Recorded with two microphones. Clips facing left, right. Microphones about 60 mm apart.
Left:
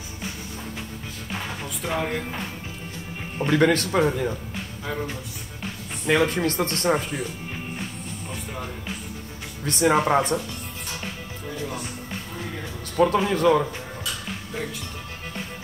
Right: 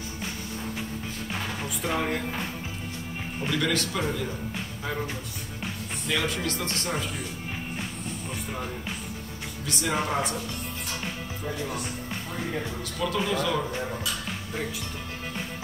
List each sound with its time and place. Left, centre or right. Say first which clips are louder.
1.3 s speech: left 2 dB; centre
3.3 s speech: left 8 dB; left
4.6 s music: left 1 dB; centre
6.0 s speech: left 8 dB; left
9.7 s speech: left 8 dB; left
12.9 s speech: left 8 dB; left